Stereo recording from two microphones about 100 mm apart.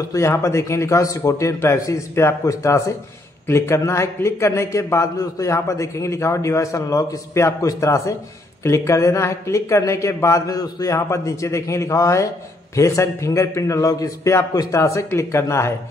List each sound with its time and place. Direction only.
0.1 s speech: 30° left (ahead or behind)